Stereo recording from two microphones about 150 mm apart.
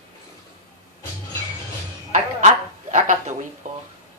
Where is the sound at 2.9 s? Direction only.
55° right (ahead or behind).